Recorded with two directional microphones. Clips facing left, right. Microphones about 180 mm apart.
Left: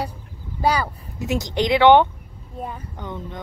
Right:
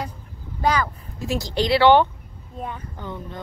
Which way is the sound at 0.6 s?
10° left (ahead or behind).